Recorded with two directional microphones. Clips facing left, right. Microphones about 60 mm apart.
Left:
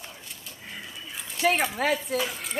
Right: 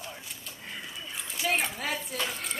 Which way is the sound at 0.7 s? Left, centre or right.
Centre.